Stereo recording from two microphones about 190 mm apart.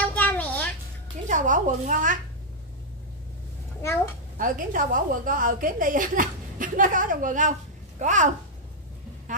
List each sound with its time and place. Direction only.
0.0 s a sound: 10° left (ahead or behind)
1.2 s speech: 40° right (ahead or behind)
3.8 s a child's voice: 15° left (ahead or behind)
4.4 s a woman's voice: 45° right (ahead or behind)